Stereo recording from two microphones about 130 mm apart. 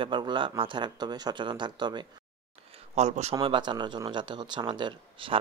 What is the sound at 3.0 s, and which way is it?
Speech, 60° right (ahead or behind).